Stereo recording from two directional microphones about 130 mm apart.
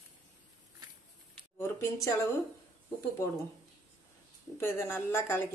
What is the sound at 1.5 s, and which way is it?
Speech, 20° left (ahead or behind).